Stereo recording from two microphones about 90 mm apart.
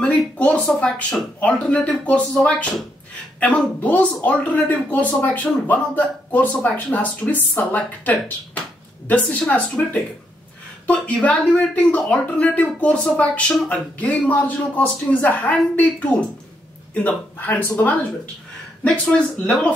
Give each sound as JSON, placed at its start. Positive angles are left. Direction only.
{"t": 0.0, "sound": "speech", "side_deg": 15}
{"t": 10.9, "sound": "a man's voice", "side_deg": 15}
{"t": 18.9, "sound": "speech", "side_deg": 10}